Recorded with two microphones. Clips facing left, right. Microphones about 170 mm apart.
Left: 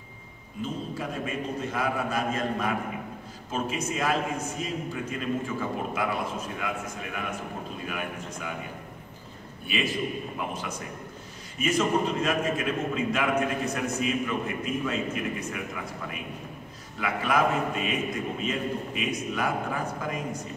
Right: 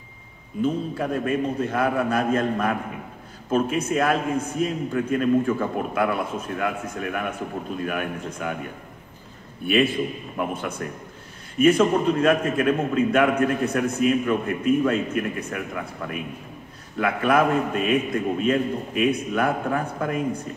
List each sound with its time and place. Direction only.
0.6 s a man's voice: 55° right (ahead or behind)
8.4 s a man's voice: 55° right (ahead or behind)
9.7 s a man's voice: 55° right (ahead or behind)